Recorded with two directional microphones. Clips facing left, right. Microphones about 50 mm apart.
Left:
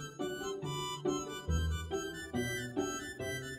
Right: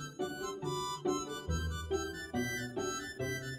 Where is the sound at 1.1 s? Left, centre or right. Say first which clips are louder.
Right 1 dB; left.